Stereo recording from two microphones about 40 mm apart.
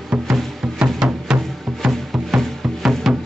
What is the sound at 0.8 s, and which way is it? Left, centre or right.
Music, right.